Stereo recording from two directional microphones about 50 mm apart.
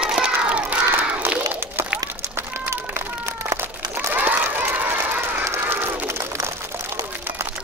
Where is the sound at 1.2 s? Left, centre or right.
Right.